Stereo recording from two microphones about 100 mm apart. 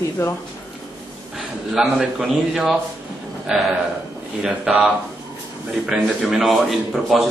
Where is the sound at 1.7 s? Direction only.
Centre (ahead or behind).